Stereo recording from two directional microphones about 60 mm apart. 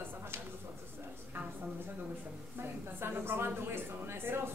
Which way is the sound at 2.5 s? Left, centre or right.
Right.